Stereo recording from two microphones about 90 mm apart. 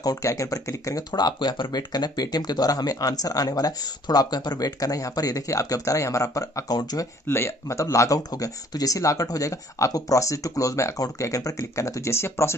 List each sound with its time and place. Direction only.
0.0 s speech: 40° left (ahead or behind)
1.1 s speech: 55° left (ahead or behind)
7.2 s speech: 30° left (ahead or behind)